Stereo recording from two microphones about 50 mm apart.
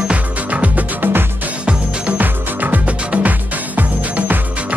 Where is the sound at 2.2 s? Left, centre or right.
Right.